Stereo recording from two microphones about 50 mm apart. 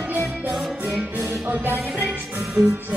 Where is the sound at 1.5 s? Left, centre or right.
Right.